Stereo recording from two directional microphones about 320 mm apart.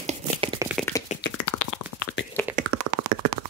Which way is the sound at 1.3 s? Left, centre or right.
Left.